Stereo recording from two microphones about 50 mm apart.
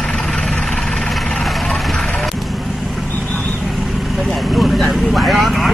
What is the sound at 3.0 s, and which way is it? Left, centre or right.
Vehicle, left.